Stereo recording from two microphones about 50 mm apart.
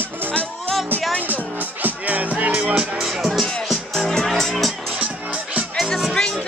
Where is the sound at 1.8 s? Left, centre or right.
Right.